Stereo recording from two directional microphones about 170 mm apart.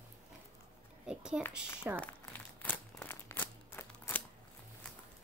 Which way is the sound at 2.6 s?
10° left (ahead or behind).